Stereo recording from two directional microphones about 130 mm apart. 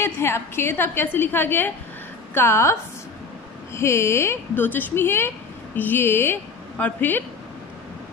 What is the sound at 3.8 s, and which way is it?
A woman's voice, 20° left (ahead or behind).